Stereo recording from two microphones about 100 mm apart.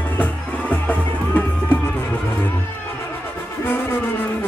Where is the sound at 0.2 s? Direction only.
15° left (ahead or behind).